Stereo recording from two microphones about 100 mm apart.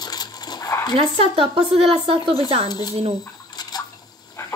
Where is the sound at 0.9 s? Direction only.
70° right (ahead or behind).